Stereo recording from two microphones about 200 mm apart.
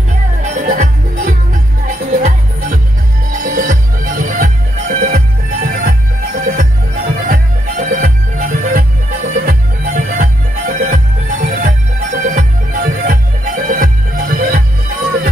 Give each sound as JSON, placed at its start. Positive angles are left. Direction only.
{"t": 0.4, "sound": "music", "side_deg": -40}